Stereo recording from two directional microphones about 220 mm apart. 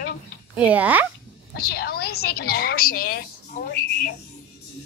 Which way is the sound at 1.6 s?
45° left (ahead or behind).